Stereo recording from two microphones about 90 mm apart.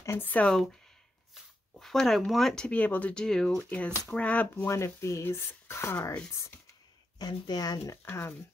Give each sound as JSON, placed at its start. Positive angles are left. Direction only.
{"t": 0.0, "sound": "speech", "side_deg": 25}
{"t": 1.3, "sound": "speech", "side_deg": 0}
{"t": 4.6, "sound": "speech", "side_deg": 30}
{"t": 7.2, "sound": "speech", "side_deg": 50}
{"t": 7.8, "sound": "speech", "side_deg": 30}